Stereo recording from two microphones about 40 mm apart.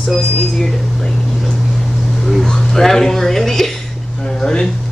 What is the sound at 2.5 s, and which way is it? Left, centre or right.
Speech, centre.